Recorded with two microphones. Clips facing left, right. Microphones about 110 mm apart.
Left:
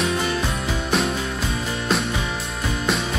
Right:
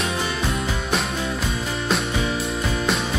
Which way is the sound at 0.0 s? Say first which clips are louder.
Left 2 dB; centre (ahead or behind).